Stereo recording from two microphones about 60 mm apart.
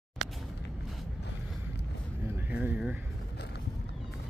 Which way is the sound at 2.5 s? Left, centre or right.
Right.